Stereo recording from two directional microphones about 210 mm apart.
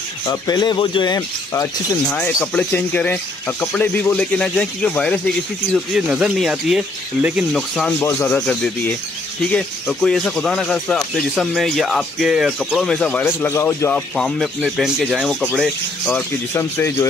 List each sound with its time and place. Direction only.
0.3 s speech: 20° left (ahead or behind)
2.1 s speech: 5° left (ahead or behind)
8.0 s speech: 10° left (ahead or behind)